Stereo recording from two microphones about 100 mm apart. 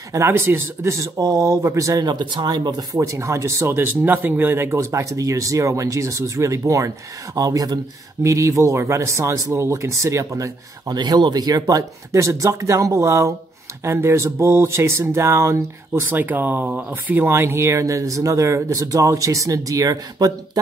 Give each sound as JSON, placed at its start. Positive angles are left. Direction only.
{"t": 0.1, "sound": "speech", "side_deg": -25}
{"t": 2.0, "sound": "speech", "side_deg": -50}
{"t": 3.0, "sound": "speech", "side_deg": -30}
{"t": 11.0, "sound": "speech", "side_deg": -45}